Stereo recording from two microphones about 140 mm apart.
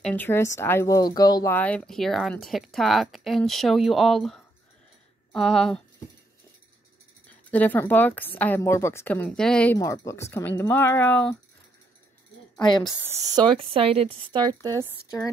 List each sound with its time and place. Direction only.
0.0 s a woman's voice: 10° left (ahead or behind); by 1.5 s 25° left (ahead or behind)
1.5 s speech: 10° left (ahead or behind)
7.2 s speech: 10° left (ahead or behind)
9.8 s a woman's voice: 20° left (ahead or behind)
12.5 s a woman's voice: 35° left (ahead or behind)
13.0 s speech: 20° right (ahead or behind)